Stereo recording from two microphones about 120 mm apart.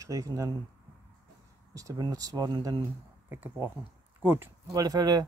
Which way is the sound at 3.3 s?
20° right (ahead or behind).